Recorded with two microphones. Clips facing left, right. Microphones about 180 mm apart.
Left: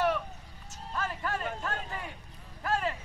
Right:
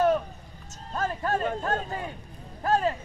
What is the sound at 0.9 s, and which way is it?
Speech, 40° right (ahead or behind).